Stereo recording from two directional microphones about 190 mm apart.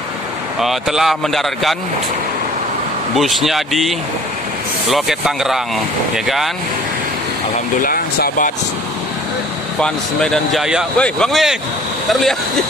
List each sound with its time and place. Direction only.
0.6 s speech: centre (ahead or behind)
3.2 s speech: centre (ahead or behind)
7.8 s speech: 50° left (ahead or behind)
9.8 s speech: 5° left (ahead or behind)